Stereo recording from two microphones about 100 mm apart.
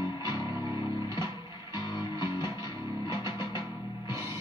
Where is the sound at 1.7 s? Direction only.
45° left (ahead or behind).